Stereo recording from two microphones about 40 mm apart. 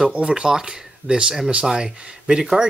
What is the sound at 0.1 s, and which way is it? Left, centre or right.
Speech, right.